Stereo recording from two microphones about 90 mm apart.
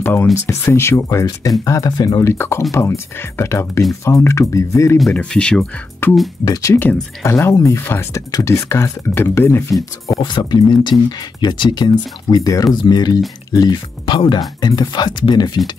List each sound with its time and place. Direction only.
0.0 s speech: 25° left (ahead or behind)
5.1 s speech: 10° left (ahead or behind)
6.0 s speech: 25° left (ahead or behind)
6.4 s speech: 45° left (ahead or behind)
6.7 s speech: 20° left (ahead or behind)
7.2 s speech: 35° left (ahead or behind)
9.8 s speech: 45° left (ahead or behind)
14.0 s speech: 65° left (ahead or behind)
14.6 s speech: 50° left (ahead or behind)